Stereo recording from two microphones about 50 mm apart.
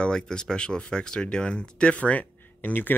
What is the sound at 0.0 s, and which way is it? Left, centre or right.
Speech, centre.